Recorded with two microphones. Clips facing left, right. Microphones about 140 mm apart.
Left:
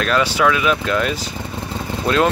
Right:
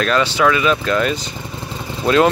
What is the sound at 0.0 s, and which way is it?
Speech, 5° left (ahead or behind).